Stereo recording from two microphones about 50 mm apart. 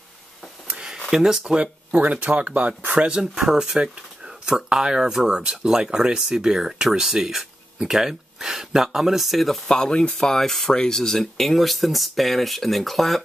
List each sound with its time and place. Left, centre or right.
0.7 s a sound: centre
1.1 s speech: centre; by 2.7 s right
3.0 s speech: centre
9.7 s speech: centre